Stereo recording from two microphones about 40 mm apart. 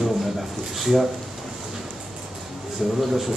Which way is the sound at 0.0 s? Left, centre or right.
Centre.